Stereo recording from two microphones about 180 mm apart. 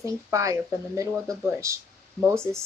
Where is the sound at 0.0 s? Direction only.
15° right (ahead or behind).